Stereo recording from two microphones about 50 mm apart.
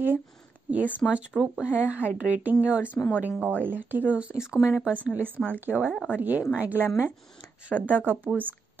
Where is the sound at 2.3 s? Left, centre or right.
Right.